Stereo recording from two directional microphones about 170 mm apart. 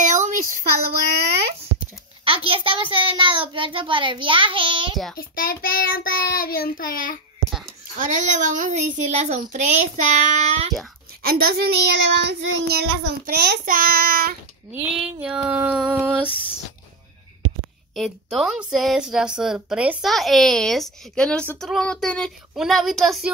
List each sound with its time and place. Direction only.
0.0 s a sound: 45° right (ahead or behind)
1.8 s a child's voice: 30° right (ahead or behind)
5.3 s child singing: 60° left (ahead or behind)
8.0 s a child's voice: 45° right (ahead or behind)
11.2 s child singing: 65° right (ahead or behind)
14.7 s female singing: 5° right (ahead or behind)
17.9 s speech: centre (ahead or behind)